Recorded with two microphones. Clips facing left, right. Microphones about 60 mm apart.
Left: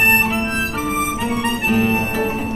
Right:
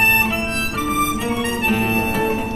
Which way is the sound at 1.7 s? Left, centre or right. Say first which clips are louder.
Left 2 dB; centre.